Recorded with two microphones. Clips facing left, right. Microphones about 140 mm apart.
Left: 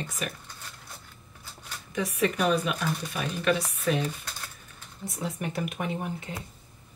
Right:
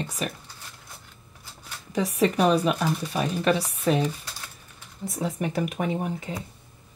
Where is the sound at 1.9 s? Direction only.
35° right (ahead or behind).